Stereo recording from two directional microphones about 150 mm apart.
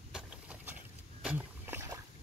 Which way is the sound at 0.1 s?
5° right (ahead or behind).